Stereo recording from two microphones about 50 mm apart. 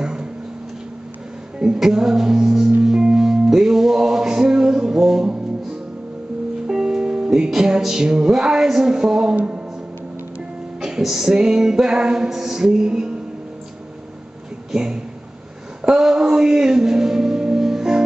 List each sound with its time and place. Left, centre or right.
0.0 s a sound: centre
1.8 s music: centre
6.7 s music: centre
10.8 s music: centre
14.7 s speech: centre
16.0 s music: centre